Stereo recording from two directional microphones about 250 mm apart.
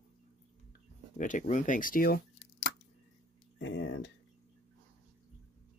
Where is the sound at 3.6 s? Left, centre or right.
Left.